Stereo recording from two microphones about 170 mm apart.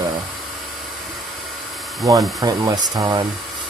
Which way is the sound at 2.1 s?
20° right (ahead or behind).